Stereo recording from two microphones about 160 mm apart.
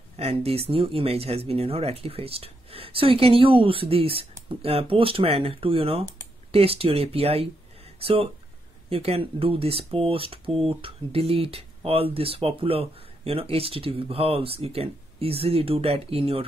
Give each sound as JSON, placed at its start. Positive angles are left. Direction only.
{"t": 0.2, "sound": "speech", "side_deg": -40}